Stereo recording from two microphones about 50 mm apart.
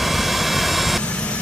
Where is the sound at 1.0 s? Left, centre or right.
Left.